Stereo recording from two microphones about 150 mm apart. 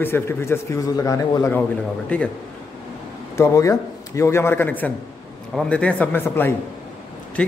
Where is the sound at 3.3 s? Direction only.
20° left (ahead or behind).